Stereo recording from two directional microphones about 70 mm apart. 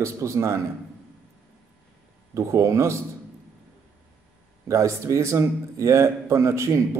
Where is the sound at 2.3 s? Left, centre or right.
Right.